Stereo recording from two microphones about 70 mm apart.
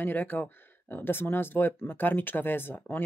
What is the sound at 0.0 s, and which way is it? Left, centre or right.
Speech, left.